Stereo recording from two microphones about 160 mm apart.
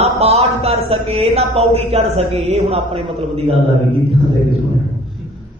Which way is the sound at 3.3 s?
40° right (ahead or behind).